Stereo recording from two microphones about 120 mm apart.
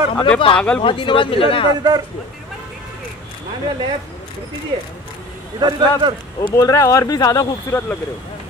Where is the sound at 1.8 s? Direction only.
35° right (ahead or behind).